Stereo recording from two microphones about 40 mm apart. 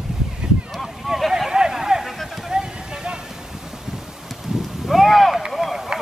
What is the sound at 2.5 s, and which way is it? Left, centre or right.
Vehicle, centre.